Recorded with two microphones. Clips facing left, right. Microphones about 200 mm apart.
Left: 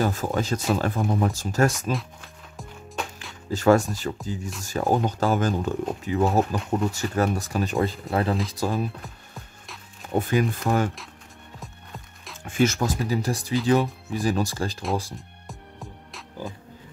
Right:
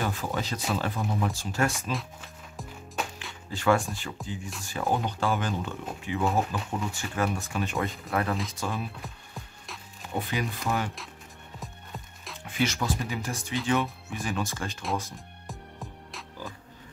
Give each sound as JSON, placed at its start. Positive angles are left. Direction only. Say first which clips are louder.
{"t": 0.0, "sound": "speech", "louder": "left 6 dB", "side_deg": 45}
{"t": 1.9, "sound": "music", "louder": "left 5 dB", "side_deg": 0}
{"t": 3.4, "sound": "speech", "louder": "left 6 dB", "side_deg": 40}
{"t": 10.1, "sound": "speech", "louder": "left 8 dB", "side_deg": 50}
{"t": 11.6, "sound": "music", "louder": "right 1 dB", "side_deg": 0}
{"t": 12.4, "sound": "speech", "louder": "left 6 dB", "side_deg": 45}